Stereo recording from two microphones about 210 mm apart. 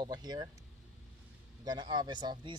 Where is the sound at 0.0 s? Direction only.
20° right (ahead or behind).